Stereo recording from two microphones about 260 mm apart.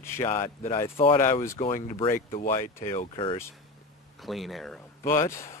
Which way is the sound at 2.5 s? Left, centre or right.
Centre.